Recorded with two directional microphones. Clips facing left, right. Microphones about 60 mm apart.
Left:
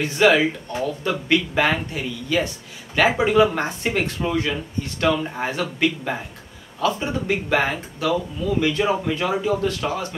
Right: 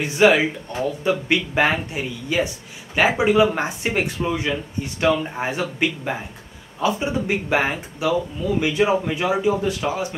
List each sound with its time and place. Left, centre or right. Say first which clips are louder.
0.0 s speech: right 1 dB; centre